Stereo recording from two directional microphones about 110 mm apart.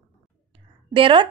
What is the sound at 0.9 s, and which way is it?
Speech, 50° right (ahead or behind).